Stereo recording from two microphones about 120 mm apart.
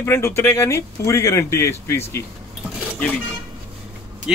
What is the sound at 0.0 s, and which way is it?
A man's voice, 20° left (ahead or behind).